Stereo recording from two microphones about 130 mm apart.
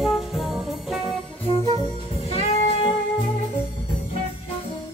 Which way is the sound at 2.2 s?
50° left (ahead or behind).